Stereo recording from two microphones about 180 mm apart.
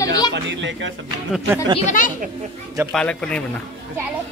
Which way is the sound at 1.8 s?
45° left (ahead or behind).